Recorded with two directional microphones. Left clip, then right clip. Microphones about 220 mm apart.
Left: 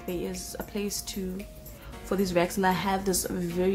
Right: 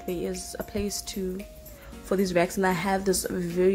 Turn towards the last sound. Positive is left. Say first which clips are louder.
# right 4 dB
turn(degrees=-15)  # may be behind; listen again after turning